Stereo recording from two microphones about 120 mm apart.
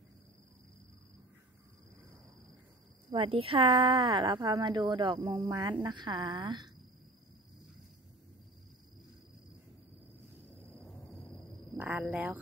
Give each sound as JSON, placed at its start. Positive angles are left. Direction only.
{"t": 3.1, "sound": "a woman's voice", "side_deg": -50}
{"t": 11.8, "sound": "speech", "side_deg": -15}